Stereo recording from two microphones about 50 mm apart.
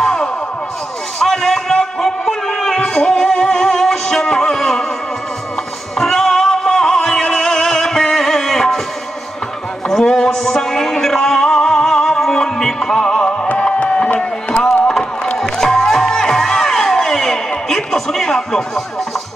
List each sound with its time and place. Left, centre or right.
0.0 s music: centre
5.9 s music: centre
9.8 s a sound: centre
15.3 s music: centre